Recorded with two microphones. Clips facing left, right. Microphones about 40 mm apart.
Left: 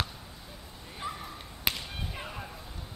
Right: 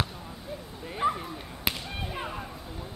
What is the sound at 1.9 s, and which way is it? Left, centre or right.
Whip, centre.